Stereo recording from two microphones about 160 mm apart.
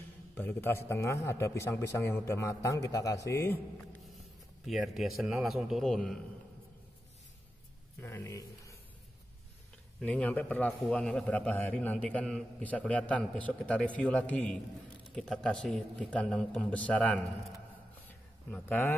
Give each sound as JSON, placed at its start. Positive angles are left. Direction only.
{"t": 0.3, "sound": "a man's voice", "side_deg": 10}
{"t": 4.6, "sound": "a man's voice", "side_deg": 0}
{"t": 8.0, "sound": "speech", "side_deg": 15}
{"t": 9.9, "sound": "a man's voice", "side_deg": 10}
{"t": 18.5, "sound": "a man's voice", "side_deg": 10}